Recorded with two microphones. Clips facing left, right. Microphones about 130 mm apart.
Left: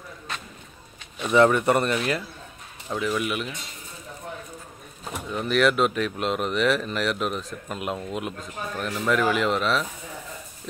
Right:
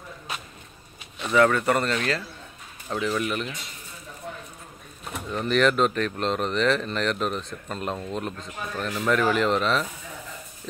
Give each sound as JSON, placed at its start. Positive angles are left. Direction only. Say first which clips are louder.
{"t": 1.3, "sound": "speech", "louder": "left 2 dB", "side_deg": 20}
{"t": 2.9, "sound": "speech", "louder": "even", "side_deg": 5}
{"t": 5.3, "sound": "speech", "louder": "even", "side_deg": 5}